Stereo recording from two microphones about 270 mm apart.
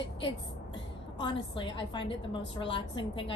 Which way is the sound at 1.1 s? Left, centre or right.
Centre.